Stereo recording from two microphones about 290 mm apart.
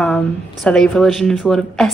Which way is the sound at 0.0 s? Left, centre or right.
Centre.